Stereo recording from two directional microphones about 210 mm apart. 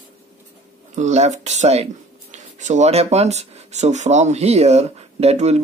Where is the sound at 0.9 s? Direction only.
35° right (ahead or behind).